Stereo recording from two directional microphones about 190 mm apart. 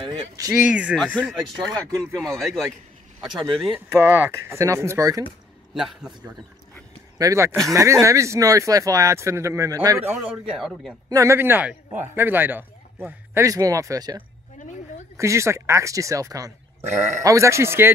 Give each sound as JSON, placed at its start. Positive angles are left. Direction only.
{"t": 0.5, "sound": "speech", "side_deg": -5}
{"t": 3.7, "sound": "speech", "side_deg": -10}
{"t": 5.8, "sound": "speech", "side_deg": -5}
{"t": 7.2, "sound": "speech", "side_deg": -15}
{"t": 11.1, "sound": "speech", "side_deg": -15}